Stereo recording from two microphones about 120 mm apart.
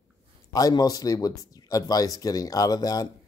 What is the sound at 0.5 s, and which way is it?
Speech, 30° left (ahead or behind).